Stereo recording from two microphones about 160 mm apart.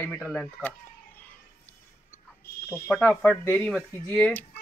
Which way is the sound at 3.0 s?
5° left (ahead or behind).